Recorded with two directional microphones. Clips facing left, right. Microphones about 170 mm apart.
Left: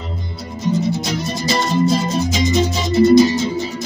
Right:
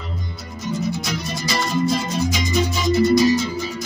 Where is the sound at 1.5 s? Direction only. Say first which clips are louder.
Left 4 dB; 25° left (ahead or behind).